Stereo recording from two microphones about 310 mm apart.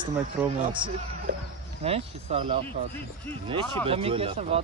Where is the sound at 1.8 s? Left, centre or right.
Centre.